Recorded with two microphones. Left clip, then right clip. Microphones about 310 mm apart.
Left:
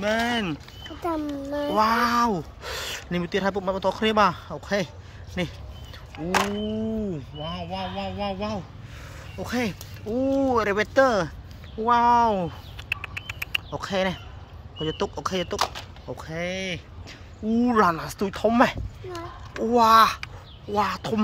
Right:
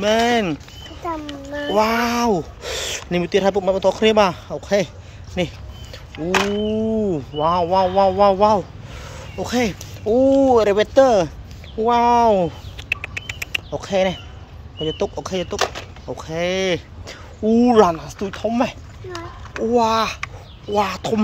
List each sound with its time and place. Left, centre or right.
0.0 s speech: centre
1.0 s a child's voice: left
1.8 s speech: centre
2.6 s a sound: centre
3.6 s speech: centre
6.1 s speech: centre
7.4 s speech: centre
11.8 s a sound: centre
14.8 s speech: centre